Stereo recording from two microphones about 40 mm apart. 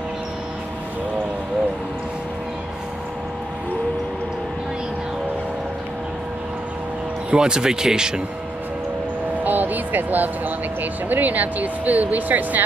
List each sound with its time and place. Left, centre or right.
7.2 s speech: right
9.4 s speech: right